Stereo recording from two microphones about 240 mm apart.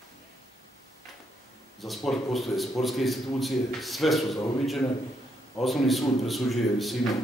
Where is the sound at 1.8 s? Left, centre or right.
Centre.